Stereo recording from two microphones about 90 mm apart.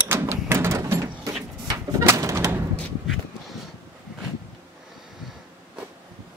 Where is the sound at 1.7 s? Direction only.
40° right (ahead or behind).